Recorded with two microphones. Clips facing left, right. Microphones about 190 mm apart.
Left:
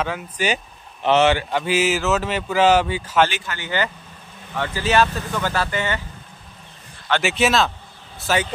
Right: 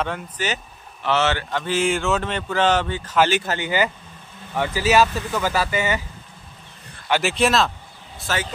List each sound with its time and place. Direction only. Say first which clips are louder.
0.0 s speech: left 2 dB; 5° left (ahead or behind)
3.5 s speech: right 3 dB; 15° right (ahead or behind)
7.1 s speech: even; centre (ahead or behind)
8.3 s speech: left 5 dB; 10° left (ahead or behind)